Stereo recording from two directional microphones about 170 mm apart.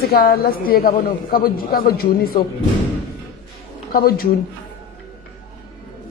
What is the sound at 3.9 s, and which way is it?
Speech, 60° left (ahead or behind).